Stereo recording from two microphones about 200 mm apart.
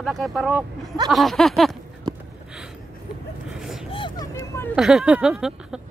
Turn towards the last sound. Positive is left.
turn(degrees=-5)  # may be behind; listen again after turning